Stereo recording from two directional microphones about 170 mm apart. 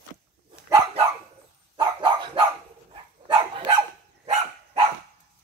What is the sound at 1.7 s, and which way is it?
Dog, 30° right (ahead or behind).